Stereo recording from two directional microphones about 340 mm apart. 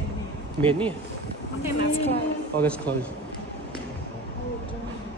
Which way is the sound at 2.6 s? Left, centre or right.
Centre.